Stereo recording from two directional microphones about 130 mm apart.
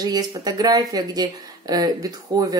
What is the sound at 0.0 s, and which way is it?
Speech, 30° right (ahead or behind).